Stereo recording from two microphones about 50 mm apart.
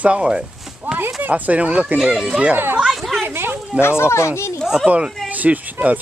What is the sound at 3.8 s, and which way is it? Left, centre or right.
Speech, left.